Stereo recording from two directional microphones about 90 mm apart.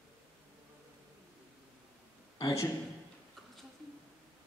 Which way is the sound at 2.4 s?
40° left (ahead or behind).